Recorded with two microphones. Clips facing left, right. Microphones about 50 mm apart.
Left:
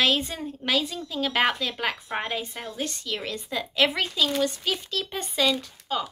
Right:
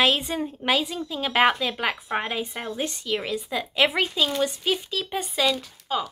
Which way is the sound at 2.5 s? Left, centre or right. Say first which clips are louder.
Right 3 dB; right.